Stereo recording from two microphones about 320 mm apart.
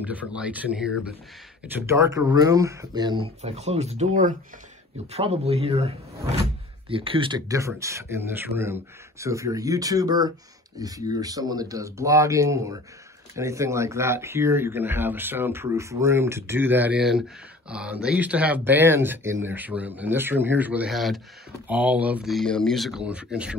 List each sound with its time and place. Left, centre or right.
0.0 s speech: centre